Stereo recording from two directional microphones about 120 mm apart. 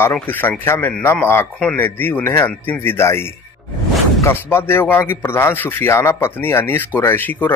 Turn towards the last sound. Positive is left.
turn(degrees=15)  # may be behind; listen again after turning